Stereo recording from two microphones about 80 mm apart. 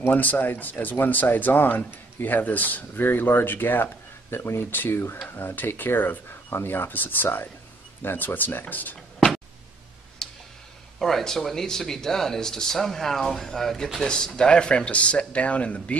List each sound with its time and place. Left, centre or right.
0.0 s speech: left
10.2 s a sound: centre
11.0 s speech: centre